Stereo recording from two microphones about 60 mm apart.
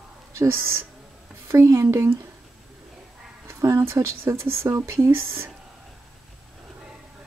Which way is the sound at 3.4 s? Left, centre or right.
Right.